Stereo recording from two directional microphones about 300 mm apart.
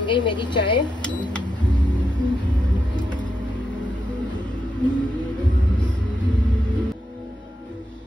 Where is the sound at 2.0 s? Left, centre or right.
Centre.